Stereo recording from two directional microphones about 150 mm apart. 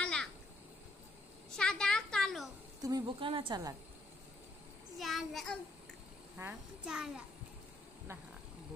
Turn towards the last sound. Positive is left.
turn(degrees=-5)  # may be behind; listen again after turning